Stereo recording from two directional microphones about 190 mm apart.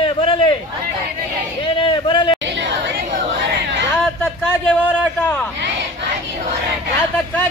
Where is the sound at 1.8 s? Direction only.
25° left (ahead or behind).